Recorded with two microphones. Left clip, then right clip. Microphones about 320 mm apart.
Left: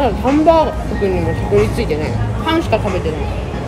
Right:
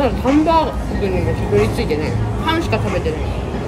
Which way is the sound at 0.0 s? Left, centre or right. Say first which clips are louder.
Left 3 dB; centre.